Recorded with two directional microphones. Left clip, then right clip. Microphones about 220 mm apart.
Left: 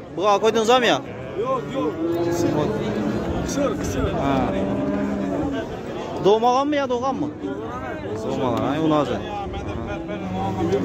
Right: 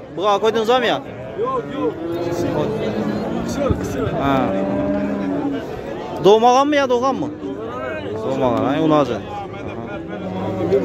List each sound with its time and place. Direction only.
0.2 s speech: centre (ahead or behind)
4.2 s speech: 10° right (ahead or behind)
6.2 s a man's voice: 25° right (ahead or behind)
8.4 s speech: 15° right (ahead or behind)